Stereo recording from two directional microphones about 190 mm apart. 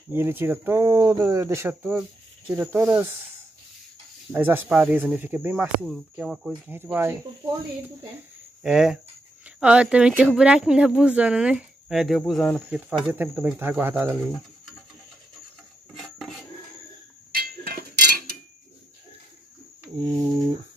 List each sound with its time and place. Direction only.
0.1 s speech: 10° right (ahead or behind)
4.3 s speech: 10° right (ahead or behind)
8.6 s speech: 5° right (ahead or behind)
13.0 s speech: 10° right (ahead or behind)
16.0 s a sound: centre (ahead or behind)
17.3 s a sound: 55° right (ahead or behind)